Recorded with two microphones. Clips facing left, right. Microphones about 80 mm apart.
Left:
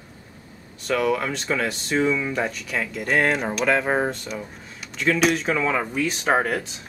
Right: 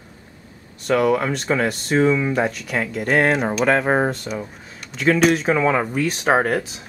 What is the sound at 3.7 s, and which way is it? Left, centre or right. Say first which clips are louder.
Speech: right 4 dB; centre.